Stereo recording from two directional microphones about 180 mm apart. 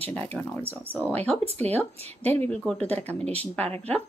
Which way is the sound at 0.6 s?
10° right (ahead or behind).